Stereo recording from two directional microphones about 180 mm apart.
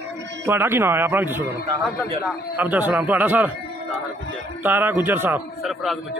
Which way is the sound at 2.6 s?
10° right (ahead or behind).